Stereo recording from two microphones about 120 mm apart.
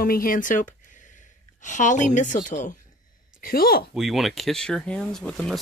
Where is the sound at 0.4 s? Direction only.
90° left.